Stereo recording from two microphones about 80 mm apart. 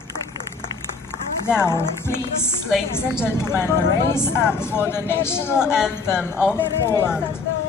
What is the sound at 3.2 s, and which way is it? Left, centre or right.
Speech, left.